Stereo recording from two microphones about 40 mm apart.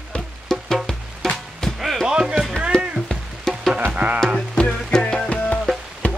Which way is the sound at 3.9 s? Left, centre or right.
Right.